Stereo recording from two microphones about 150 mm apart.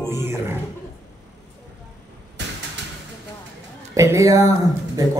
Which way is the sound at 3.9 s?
20° right (ahead or behind).